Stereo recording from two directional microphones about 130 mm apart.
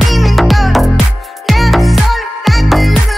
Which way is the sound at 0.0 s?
Centre (ahead or behind).